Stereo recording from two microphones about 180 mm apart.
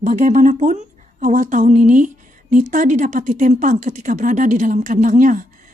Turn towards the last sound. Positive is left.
turn(degrees=-45)  # may be behind; listen again after turning